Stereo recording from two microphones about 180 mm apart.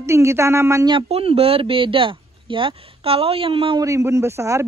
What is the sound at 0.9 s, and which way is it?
Speech, 35° right (ahead or behind).